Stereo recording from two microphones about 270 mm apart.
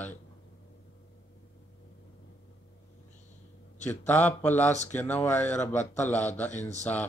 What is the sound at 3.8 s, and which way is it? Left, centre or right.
Speech, centre.